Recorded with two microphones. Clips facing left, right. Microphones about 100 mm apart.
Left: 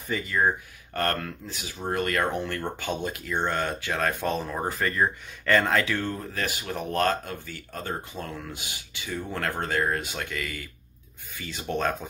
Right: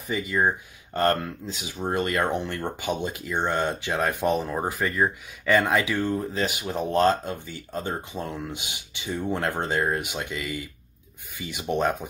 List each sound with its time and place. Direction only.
0.1 s speech: 15° right (ahead or behind)